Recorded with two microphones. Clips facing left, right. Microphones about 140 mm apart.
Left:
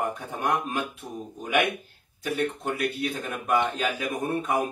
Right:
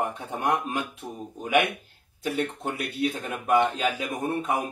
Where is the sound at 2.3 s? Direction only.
20° right (ahead or behind).